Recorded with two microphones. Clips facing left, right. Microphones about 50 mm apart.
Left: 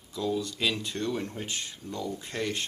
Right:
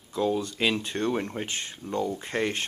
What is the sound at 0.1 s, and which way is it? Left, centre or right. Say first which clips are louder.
Speech: right 4 dB; right.